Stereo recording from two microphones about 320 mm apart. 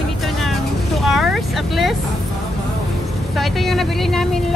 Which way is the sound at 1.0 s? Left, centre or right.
Centre.